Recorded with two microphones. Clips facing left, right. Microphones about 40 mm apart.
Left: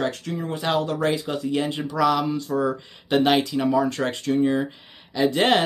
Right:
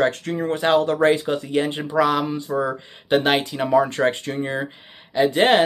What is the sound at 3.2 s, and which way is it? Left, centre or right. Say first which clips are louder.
Speech: left 5 dB; right.